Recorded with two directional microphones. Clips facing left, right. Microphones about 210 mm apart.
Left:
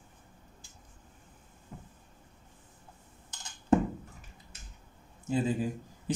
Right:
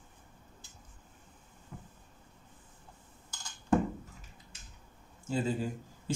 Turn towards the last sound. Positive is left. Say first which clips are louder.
# left 2 dB
turn(degrees=15)  # may be behind; listen again after turning